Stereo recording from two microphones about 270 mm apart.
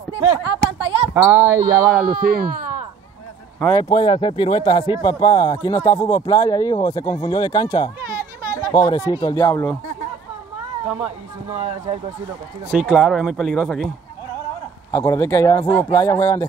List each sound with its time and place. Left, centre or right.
0.1 s a sound: centre
2.1 s speech: right
3.5 s speech: centre
3.9 s speech: centre
11.5 s speech: right
12.7 s speech: centre
14.9 s speech: centre